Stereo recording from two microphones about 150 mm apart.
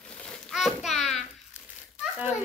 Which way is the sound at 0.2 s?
Centre (ahead or behind).